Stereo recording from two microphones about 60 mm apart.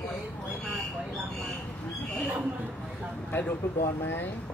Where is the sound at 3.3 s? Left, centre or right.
Left.